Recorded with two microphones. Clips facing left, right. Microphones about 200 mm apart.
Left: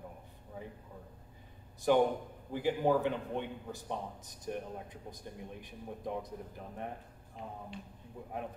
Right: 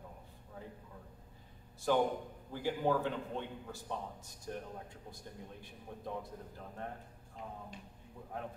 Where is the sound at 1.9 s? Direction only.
15° left (ahead or behind).